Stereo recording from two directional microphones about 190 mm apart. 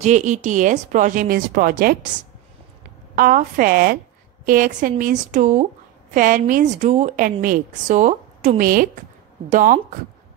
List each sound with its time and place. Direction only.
0.0 s a woman's voice: 40° right (ahead or behind)
3.2 s a woman's voice: 45° right (ahead or behind)